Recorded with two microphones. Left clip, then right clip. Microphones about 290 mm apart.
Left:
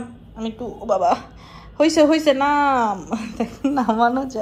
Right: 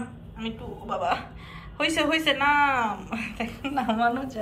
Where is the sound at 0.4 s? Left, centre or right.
Centre.